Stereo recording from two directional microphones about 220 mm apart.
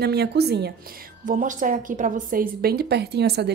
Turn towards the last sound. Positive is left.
turn(degrees=-50)  # may be behind; listen again after turning